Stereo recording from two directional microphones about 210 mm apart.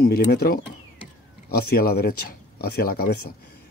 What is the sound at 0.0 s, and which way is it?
Speech, 45° left (ahead or behind).